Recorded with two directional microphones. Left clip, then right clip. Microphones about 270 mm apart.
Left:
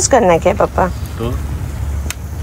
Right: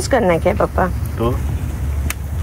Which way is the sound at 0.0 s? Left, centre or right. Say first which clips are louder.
Left 5 dB; centre.